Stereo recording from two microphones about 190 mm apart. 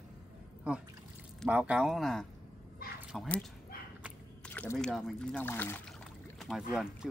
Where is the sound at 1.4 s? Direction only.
5° right (ahead or behind).